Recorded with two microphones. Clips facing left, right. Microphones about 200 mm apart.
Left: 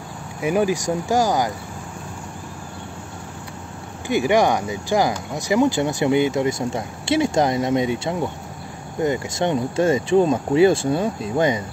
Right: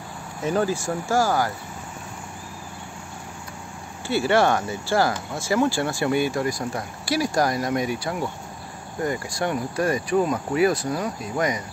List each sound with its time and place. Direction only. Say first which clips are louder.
0.4 s speech: left 3 dB; 15° left (ahead or behind)
4.1 s speech: left 2 dB; 15° left (ahead or behind)